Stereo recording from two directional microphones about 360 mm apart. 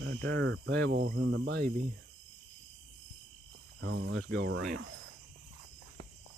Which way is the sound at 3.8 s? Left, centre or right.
Right.